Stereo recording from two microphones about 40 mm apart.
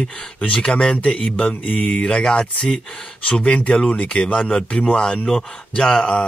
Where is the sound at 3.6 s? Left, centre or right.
Left.